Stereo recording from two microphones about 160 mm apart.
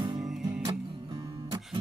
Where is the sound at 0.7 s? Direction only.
20° right (ahead or behind).